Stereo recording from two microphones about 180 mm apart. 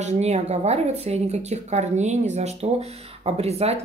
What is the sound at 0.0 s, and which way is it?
Speech, 35° right (ahead or behind).